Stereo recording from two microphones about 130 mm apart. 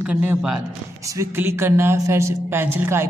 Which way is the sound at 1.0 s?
25° right (ahead or behind).